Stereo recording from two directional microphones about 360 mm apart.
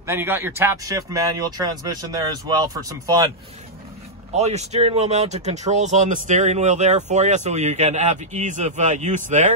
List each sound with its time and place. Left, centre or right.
0.0 s speech: centre
4.4 s speech: centre